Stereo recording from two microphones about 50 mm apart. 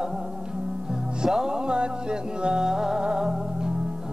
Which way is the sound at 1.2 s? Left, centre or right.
Centre.